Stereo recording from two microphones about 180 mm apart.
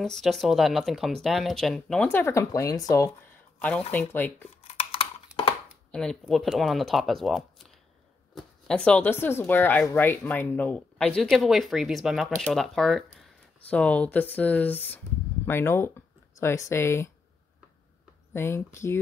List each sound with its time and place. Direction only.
0.0 s speech: centre (ahead or behind)
4.6 s a sound: 30° left (ahead or behind)
5.9 s speech: 5° left (ahead or behind)
18.3 s speech: 15° left (ahead or behind)